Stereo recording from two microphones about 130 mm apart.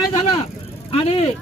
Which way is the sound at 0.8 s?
45° left (ahead or behind).